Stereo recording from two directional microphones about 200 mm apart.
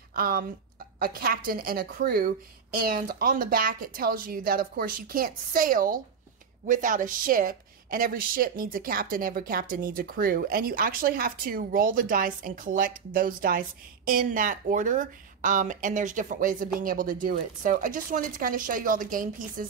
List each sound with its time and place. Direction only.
0.1 s a woman's voice: 45° right (ahead or behind)